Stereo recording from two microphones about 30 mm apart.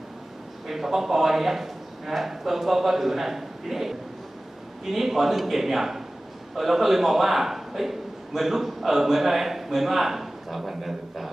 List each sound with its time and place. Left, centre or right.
0.7 s a man's voice: centre